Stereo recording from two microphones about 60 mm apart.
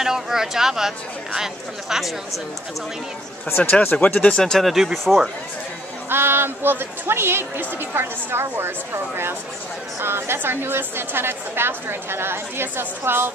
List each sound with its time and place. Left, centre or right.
0.0 s speech: centre
3.4 s speech: left
4.1 s speech: left
4.4 s speech: centre
4.6 s speech: centre
6.0 s a woman's voice: right